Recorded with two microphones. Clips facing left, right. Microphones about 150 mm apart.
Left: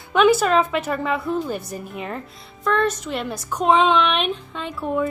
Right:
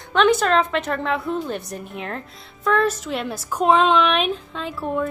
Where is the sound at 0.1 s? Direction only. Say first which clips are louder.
Left 1 dB; 5° left (ahead or behind).